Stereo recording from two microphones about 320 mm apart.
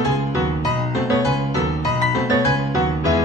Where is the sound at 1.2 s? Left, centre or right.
Centre.